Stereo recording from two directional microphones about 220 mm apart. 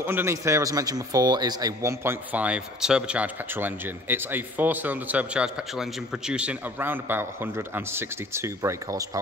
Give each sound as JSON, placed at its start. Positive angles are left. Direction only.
{"t": 0.0, "sound": "speech", "side_deg": -10}